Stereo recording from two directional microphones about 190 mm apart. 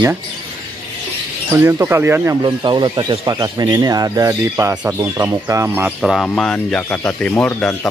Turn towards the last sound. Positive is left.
turn(degrees=5)  # may be behind; listen again after turning